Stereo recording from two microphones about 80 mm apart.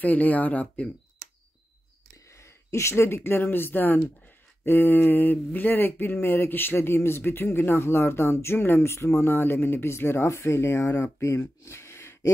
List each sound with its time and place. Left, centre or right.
0.0 s speech: centre
2.2 s speech: left